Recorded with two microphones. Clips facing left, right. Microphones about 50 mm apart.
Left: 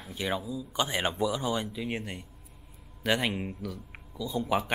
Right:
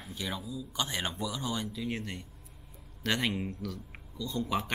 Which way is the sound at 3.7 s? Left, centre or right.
Centre.